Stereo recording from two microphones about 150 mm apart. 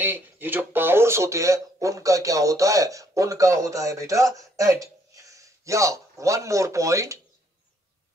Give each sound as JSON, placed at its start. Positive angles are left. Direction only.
{"t": 0.0, "sound": "speech", "side_deg": -15}